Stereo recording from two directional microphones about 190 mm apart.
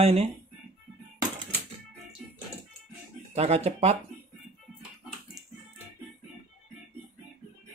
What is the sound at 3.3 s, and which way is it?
Speech, 35° right (ahead or behind).